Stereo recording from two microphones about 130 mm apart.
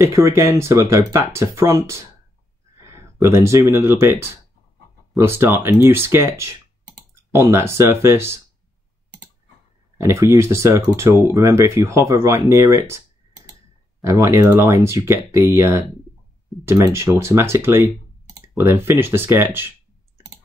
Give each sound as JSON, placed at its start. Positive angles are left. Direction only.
{"t": 0.0, "sound": "speech", "side_deg": -20}
{"t": 9.9, "sound": "speech", "side_deg": -20}
{"t": 14.0, "sound": "speech", "side_deg": -20}